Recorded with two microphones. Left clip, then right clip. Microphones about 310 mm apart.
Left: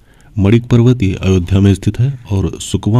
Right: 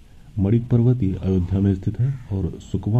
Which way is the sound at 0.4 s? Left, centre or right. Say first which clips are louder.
Left 10 dB; left.